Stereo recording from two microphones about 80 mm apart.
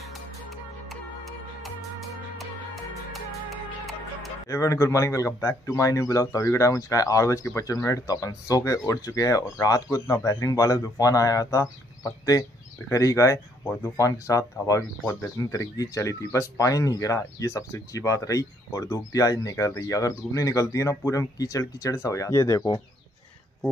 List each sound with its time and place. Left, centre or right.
0.1 s music: centre
4.5 s a man's voice: left